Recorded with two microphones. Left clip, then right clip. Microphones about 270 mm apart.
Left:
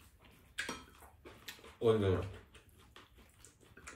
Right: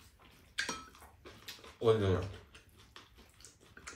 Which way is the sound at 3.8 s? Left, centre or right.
Centre.